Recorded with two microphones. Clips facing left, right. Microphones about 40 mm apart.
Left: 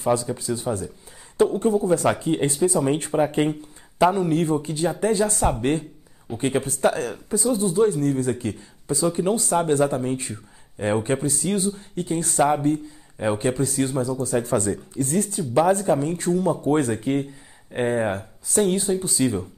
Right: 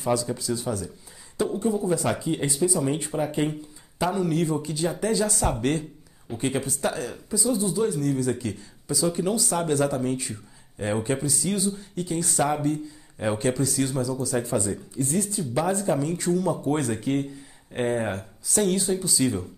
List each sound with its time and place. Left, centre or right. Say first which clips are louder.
0.0 s speech: left 3 dB; left
13.4 s speech: left 2 dB; left